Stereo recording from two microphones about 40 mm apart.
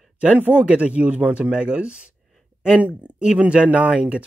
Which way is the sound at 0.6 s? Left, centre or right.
Right.